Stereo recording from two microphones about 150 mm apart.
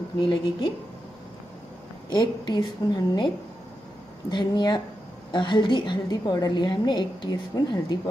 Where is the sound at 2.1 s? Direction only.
25° left (ahead or behind).